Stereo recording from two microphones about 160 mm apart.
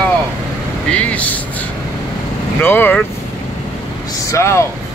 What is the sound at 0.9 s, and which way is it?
Speech, 10° left (ahead or behind).